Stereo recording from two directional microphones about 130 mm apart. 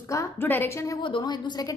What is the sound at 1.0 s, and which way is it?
Speech, 35° left (ahead or behind).